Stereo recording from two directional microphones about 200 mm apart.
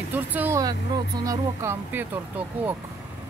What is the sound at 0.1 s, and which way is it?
Speech, 10° right (ahead or behind).